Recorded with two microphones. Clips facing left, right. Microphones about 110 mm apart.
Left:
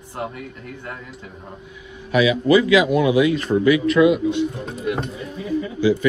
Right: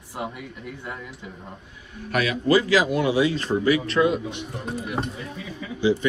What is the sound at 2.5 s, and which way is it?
Speech, 35° right (ahead or behind).